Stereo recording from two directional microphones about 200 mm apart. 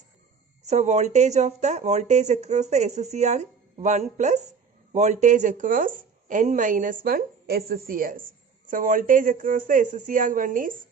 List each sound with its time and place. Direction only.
0.7 s speech: 35° right (ahead or behind)